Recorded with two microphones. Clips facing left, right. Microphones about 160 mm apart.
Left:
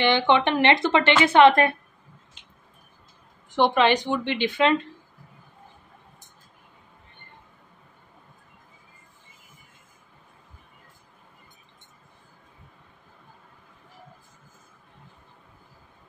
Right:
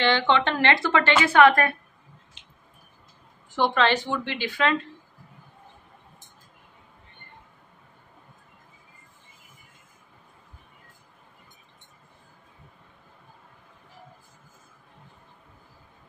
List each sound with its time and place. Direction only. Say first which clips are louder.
0.0 s a woman's voice: left 2 dB; 15° left (ahead or behind)
3.5 s a woman's voice: left 3 dB; 15° left (ahead or behind)